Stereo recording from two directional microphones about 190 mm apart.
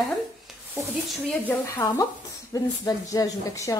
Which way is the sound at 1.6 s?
15° left (ahead or behind).